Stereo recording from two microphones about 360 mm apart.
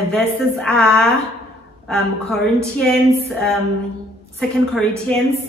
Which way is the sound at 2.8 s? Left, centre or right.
Centre.